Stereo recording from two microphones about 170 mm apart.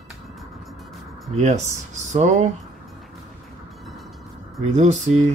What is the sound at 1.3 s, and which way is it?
Speech, 40° right (ahead or behind).